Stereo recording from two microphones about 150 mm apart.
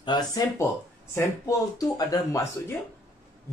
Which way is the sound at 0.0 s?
30° left (ahead or behind).